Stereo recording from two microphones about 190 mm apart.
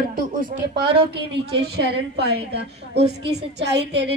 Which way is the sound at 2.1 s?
60° right (ahead or behind).